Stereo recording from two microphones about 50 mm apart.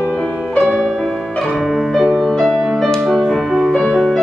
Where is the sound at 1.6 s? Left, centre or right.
Centre.